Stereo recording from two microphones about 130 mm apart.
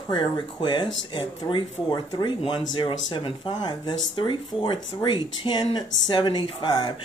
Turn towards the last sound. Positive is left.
turn(degrees=35)  # may be behind; listen again after turning